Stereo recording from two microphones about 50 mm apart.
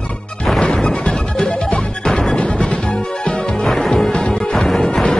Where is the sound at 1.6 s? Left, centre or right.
Centre.